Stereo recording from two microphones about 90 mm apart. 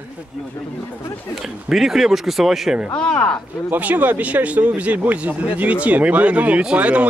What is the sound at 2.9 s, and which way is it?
Speech, 10° left (ahead or behind).